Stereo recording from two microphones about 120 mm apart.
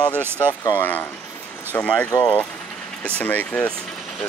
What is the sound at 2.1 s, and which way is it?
Speech, 25° left (ahead or behind).